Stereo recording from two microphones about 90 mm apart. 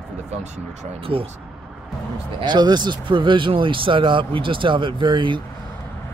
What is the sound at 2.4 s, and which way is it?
Speech, 55° right (ahead or behind).